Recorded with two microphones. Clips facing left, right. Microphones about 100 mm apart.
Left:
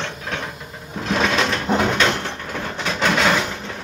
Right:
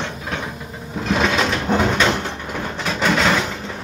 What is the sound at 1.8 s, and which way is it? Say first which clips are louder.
Mechanisms: right 1 dB; 10° right (ahead or behind).